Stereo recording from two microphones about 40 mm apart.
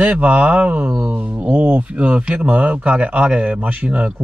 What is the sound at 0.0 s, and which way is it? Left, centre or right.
Speech, right.